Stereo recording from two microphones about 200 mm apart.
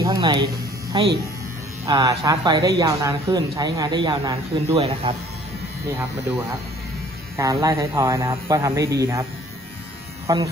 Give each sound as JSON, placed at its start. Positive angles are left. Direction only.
{"t": 0.0, "sound": "speech", "side_deg": -20}
{"t": 1.9, "sound": "speech", "side_deg": -20}
{"t": 7.3, "sound": "speech", "side_deg": -15}
{"t": 10.2, "sound": "speech", "side_deg": -15}